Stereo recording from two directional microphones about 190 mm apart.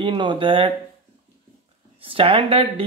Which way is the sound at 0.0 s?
25° right (ahead or behind).